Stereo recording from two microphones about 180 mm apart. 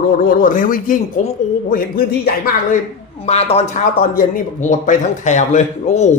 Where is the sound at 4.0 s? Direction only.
45° left (ahead or behind).